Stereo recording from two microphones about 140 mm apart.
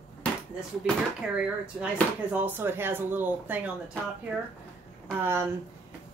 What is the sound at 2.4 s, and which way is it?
Speech, 15° right (ahead or behind).